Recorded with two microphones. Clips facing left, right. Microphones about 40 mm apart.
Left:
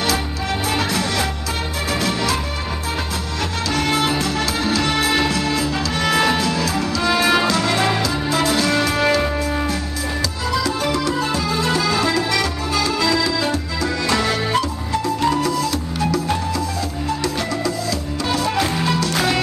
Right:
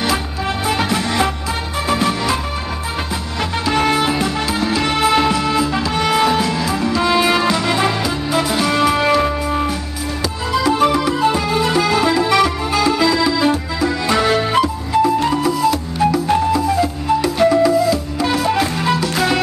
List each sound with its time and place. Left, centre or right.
0.7 s music: right
3.6 s music: right
10.5 s music: right; by 19.4 s centre